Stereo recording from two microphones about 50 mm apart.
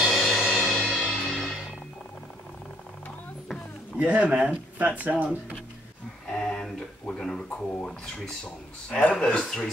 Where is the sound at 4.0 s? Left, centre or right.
Right.